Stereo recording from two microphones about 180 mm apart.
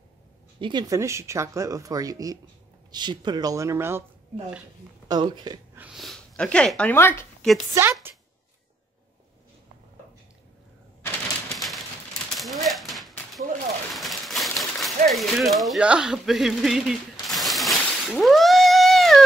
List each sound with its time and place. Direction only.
0.6 s speech: 25° right (ahead or behind)
5.0 s speech: 25° right (ahead or behind)
5.8 s speech: centre (ahead or behind)
8.1 s a sound: 10° right (ahead or behind)
11.0 s typewriter: centre (ahead or behind)
12.6 s a sound: centre (ahead or behind)